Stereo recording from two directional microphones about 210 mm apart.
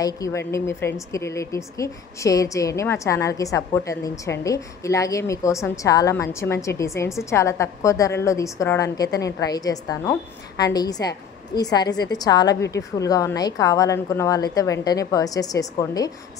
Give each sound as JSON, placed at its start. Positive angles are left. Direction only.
{"t": 0.0, "sound": "a woman's voice", "side_deg": 15}